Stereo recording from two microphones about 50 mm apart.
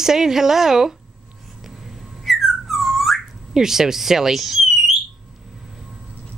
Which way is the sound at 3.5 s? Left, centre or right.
Centre.